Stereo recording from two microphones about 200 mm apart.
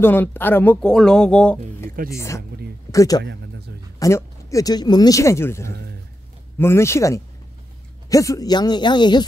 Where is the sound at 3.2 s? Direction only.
60° right (ahead or behind).